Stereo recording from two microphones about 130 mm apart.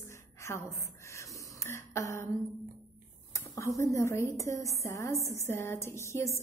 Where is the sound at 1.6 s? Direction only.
20° left (ahead or behind).